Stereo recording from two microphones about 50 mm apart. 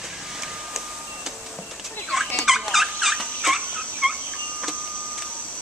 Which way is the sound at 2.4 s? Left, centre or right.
Centre.